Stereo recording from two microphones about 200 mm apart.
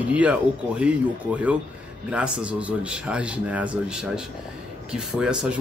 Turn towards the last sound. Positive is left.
turn(degrees=-5)  # may be behind; listen again after turning